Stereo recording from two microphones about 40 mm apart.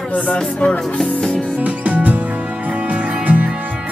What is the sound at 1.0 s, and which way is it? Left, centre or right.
Music, centre.